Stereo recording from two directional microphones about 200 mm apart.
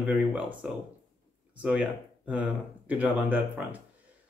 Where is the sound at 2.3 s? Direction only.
5° right (ahead or behind).